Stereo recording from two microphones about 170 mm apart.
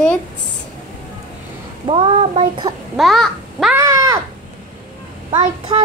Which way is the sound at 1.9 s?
30° right (ahead or behind).